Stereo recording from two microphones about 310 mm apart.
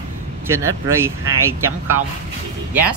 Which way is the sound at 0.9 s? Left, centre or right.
Centre.